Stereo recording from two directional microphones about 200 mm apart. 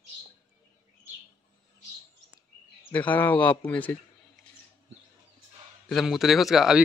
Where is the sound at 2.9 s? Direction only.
10° left (ahead or behind).